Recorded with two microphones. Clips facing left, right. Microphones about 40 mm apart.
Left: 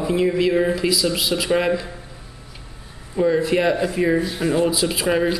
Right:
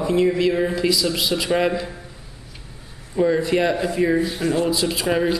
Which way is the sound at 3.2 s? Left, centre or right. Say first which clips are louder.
Even; centre.